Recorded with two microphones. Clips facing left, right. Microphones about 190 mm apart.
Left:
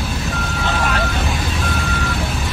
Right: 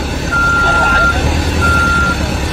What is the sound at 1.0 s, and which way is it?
Vehicle, 70° right (ahead or behind).